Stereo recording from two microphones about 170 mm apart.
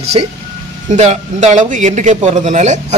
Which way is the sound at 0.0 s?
40° right (ahead or behind).